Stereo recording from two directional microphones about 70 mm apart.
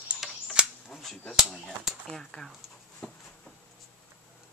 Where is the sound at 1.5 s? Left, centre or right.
Centre.